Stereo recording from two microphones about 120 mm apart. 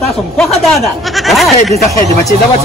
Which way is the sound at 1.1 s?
Centre (ahead or behind).